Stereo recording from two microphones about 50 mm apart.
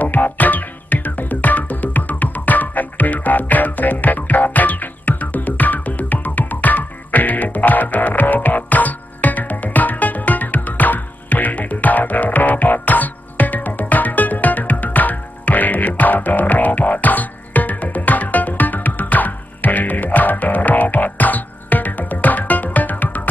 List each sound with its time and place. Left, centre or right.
0.0 s music: left